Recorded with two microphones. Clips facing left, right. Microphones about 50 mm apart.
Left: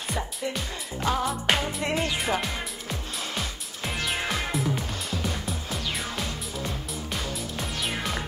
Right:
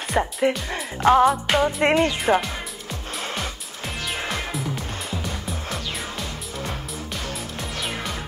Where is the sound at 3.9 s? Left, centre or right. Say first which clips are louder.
Even; centre.